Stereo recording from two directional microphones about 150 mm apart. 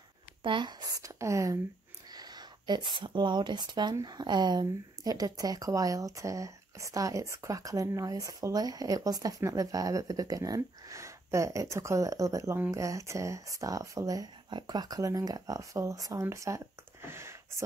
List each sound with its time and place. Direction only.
0.4 s speech: 30° right (ahead or behind); by 17.6 s 15° right (ahead or behind)